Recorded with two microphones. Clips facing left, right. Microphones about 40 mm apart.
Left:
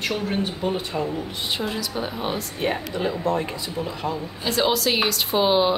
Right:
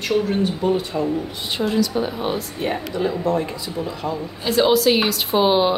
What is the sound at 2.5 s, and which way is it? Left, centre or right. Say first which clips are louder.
Speech: right 2 dB; left.